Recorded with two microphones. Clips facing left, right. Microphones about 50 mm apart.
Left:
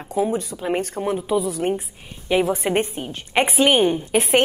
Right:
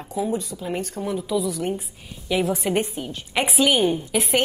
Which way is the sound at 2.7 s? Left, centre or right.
Left.